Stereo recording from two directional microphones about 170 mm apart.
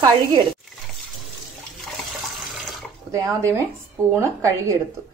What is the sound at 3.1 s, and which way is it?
Speech, 20° right (ahead or behind).